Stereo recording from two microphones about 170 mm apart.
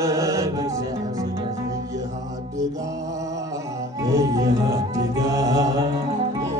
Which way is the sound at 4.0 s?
20° right (ahead or behind).